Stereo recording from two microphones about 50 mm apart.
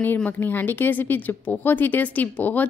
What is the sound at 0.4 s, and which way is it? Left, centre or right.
A woman's voice, left.